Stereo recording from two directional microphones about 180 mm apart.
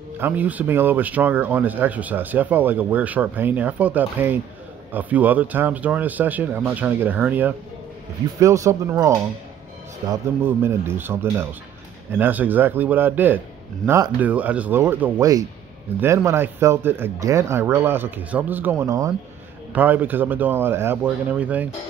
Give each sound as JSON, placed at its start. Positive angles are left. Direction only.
{"t": 0.2, "sound": "speech", "side_deg": -10}
{"t": 10.4, "sound": "speech", "side_deg": -15}